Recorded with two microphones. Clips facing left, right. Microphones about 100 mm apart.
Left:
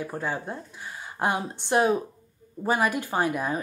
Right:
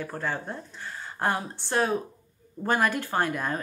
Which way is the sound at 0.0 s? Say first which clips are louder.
Left 1 dB; 15° left (ahead or behind).